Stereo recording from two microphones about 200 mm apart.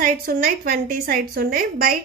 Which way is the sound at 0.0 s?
45° right (ahead or behind).